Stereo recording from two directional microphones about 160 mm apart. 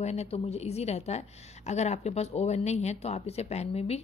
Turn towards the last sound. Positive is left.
turn(degrees=40)  # may be behind; listen again after turning